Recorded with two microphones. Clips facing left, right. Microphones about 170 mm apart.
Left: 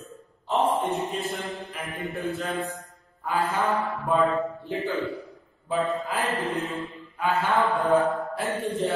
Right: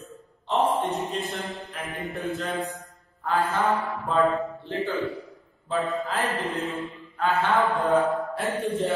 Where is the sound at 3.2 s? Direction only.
10° left (ahead or behind).